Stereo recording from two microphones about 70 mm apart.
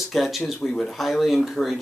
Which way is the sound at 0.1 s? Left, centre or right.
Centre.